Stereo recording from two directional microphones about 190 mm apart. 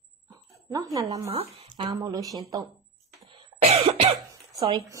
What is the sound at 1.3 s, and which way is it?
Speech, 30° right (ahead or behind).